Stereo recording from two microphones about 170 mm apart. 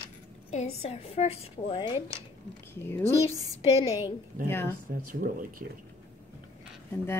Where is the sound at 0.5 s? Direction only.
40° left (ahead or behind).